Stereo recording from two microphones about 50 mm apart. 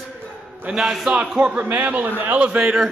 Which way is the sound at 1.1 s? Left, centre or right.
Right.